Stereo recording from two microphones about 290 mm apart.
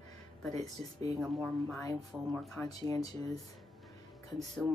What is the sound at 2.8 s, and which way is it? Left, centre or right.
Speech, centre.